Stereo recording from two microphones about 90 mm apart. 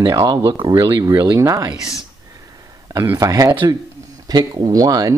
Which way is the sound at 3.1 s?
40° right (ahead or behind).